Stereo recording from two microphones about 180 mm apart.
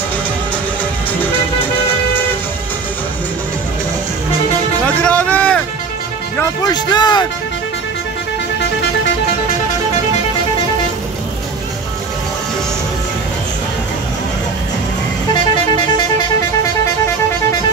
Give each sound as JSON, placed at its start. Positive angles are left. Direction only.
{"t": 4.8, "sound": "music", "side_deg": 5}
{"t": 6.6, "sound": "speech", "side_deg": 25}
{"t": 15.5, "sound": "vehicle", "side_deg": 25}